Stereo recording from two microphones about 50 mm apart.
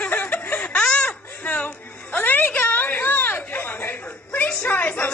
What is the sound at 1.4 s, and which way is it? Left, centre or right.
Music, left.